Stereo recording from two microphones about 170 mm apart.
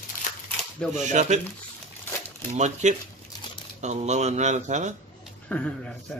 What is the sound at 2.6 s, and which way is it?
Speech, 45° right (ahead or behind).